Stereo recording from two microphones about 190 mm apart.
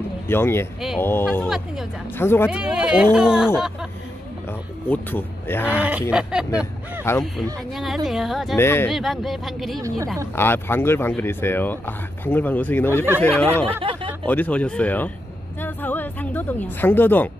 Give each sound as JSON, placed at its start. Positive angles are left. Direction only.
{"t": 0.3, "sound": "speech", "side_deg": 10}
{"t": 0.7, "sound": "speech", "side_deg": 0}
{"t": 1.0, "sound": "speech", "side_deg": 10}
{"t": 2.5, "sound": "speech", "side_deg": -5}
{"t": 4.5, "sound": "speech", "side_deg": 10}
{"t": 5.8, "sound": "a sound", "side_deg": -5}
{"t": 7.1, "sound": "speech", "side_deg": 15}
{"t": 7.7, "sound": "speech", "side_deg": 0}
{"t": 8.5, "sound": "speech", "side_deg": 10}
{"t": 8.9, "sound": "speech", "side_deg": 0}
{"t": 10.3, "sound": "speech", "side_deg": 10}
{"t": 13.7, "sound": "a sound", "side_deg": -25}
{"t": 14.2, "sound": "speech", "side_deg": 10}
{"t": 15.6, "sound": "music", "side_deg": 10}